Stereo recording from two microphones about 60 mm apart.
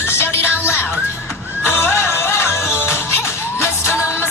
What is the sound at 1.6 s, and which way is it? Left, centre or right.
Music, left.